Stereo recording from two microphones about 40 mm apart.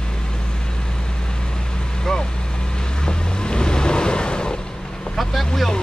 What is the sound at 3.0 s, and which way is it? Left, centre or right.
Vehicle, left.